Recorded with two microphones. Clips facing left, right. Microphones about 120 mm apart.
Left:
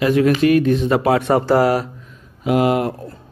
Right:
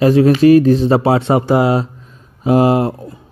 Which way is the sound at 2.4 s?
35° right (ahead or behind).